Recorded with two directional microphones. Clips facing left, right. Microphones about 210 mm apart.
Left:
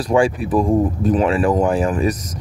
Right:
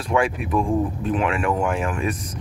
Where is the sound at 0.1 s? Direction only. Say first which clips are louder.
Left 5 dB; 30° left (ahead or behind).